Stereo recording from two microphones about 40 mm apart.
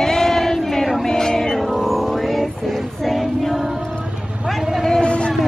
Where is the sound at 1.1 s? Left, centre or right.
Centre.